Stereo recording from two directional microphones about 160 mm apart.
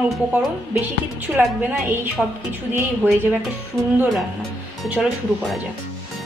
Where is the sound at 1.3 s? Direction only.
15° right (ahead or behind).